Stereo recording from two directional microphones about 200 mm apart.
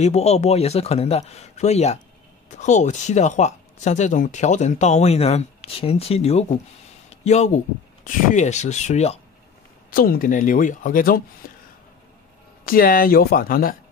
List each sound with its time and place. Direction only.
0.0 s speech: 35° left (ahead or behind)
9.8 s speech: 45° left (ahead or behind)
12.6 s speech: 45° left (ahead or behind)